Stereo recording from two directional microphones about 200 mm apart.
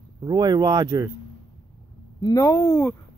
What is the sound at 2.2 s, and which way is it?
Speech, 15° left (ahead or behind).